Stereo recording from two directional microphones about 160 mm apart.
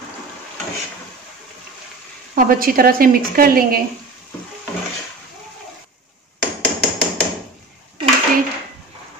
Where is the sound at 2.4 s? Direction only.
65° right (ahead or behind).